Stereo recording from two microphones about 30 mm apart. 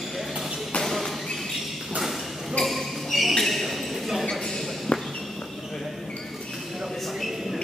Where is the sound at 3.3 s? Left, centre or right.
Centre.